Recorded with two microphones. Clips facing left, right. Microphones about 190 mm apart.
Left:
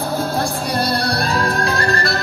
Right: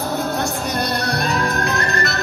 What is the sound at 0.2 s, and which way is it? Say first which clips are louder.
Music: left 1 dB; 30° left (ahead or behind).